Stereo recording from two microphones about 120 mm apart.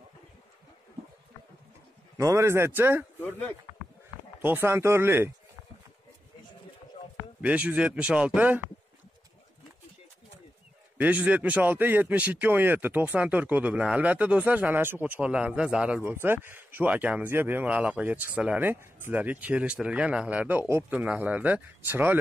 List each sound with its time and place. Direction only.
2.1 s speech: 25° right (ahead or behind)
3.2 s speech: 15° left (ahead or behind)
4.4 s speech: 15° right (ahead or behind)
7.4 s speech: 10° right (ahead or behind)
11.0 s speech: 15° right (ahead or behind)